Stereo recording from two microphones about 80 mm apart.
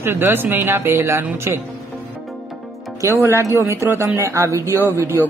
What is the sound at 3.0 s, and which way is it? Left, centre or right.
Speech, right.